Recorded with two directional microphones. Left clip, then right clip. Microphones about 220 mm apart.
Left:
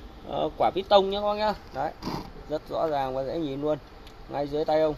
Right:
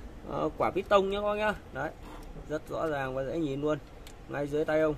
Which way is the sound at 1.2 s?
15° right (ahead or behind).